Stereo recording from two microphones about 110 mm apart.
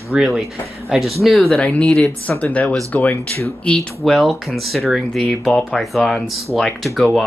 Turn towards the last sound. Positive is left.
turn(degrees=0)  # may be behind; listen again after turning